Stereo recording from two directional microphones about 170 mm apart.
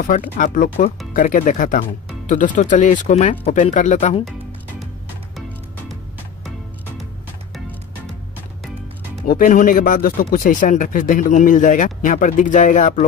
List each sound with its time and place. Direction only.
0.1 s speech: 50° left (ahead or behind)
9.3 s speech: 50° left (ahead or behind)